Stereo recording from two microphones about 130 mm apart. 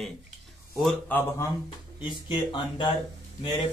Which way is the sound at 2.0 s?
35° left (ahead or behind).